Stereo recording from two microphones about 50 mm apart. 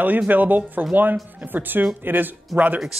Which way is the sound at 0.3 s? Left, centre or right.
Right.